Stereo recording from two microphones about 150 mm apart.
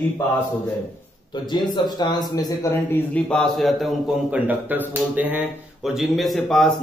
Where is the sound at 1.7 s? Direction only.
30° left (ahead or behind).